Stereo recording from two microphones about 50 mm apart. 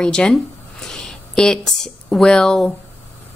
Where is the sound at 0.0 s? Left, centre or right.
Centre.